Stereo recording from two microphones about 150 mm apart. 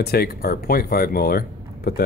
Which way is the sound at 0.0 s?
90° left.